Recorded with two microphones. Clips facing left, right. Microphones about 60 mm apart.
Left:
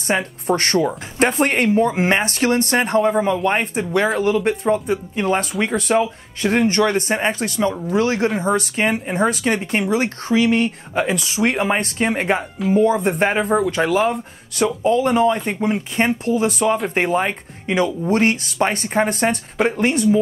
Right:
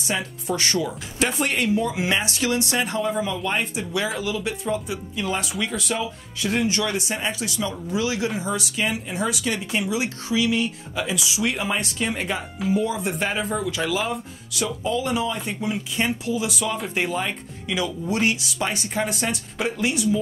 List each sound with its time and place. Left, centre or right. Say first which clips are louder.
0.0 s speech: left 7 dB; left